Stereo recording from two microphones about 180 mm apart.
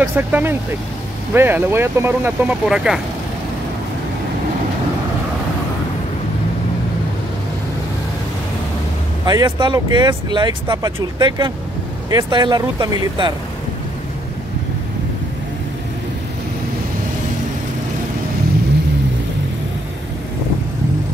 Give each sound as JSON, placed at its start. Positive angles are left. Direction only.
{"t": 0.0, "sound": "speech", "side_deg": -10}
{"t": 9.2, "sound": "speech", "side_deg": -25}